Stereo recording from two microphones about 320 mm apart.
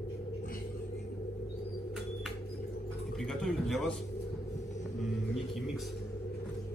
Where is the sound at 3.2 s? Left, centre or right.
Centre.